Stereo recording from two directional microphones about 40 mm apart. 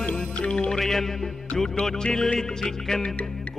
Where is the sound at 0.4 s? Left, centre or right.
Left.